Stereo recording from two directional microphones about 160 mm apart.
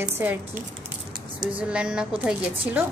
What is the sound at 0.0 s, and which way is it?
Speech, 10° right (ahead or behind).